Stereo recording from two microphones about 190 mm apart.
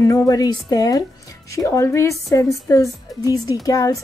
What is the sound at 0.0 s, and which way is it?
Speech, 15° left (ahead or behind).